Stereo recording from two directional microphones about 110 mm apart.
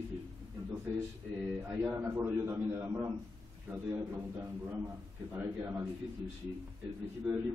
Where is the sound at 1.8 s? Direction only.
20° right (ahead or behind).